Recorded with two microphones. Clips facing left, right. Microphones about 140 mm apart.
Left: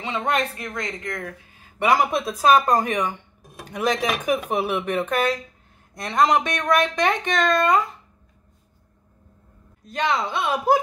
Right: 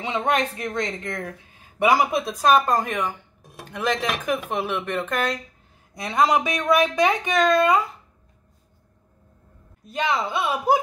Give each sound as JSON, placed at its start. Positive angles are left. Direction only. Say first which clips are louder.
{"t": 0.0, "sound": "a woman's voice", "louder": "right 1 dB", "side_deg": -15}
{"t": 1.8, "sound": "speech", "louder": "even", "side_deg": -5}
{"t": 6.0, "sound": "speech", "louder": "left 1 dB", "side_deg": -5}
{"t": 9.8, "sound": "speech", "louder": "left 1 dB", "side_deg": -5}